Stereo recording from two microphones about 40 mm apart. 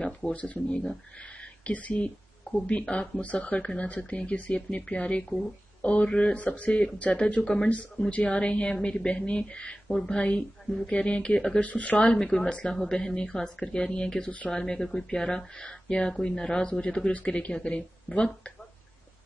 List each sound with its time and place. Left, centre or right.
0.0 s speech: left
11.6 s speech: left
12.2 s speech: left
14.2 s speech: left
14.5 s speech: centre
17.1 s speech: left